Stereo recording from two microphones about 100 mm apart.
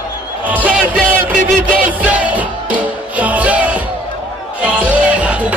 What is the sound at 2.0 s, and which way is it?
Music, 15° right (ahead or behind).